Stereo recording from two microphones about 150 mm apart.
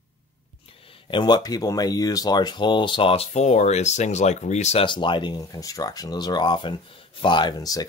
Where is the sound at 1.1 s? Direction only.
30° left (ahead or behind); by 4.8 s 50° left (ahead or behind).